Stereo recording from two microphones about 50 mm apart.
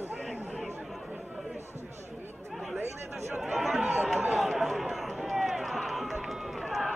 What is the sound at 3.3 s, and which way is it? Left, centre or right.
Chatter, centre.